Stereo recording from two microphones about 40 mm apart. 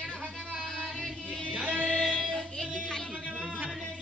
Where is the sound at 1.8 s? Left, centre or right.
Left.